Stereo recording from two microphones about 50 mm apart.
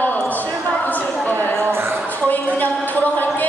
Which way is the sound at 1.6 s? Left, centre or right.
Right.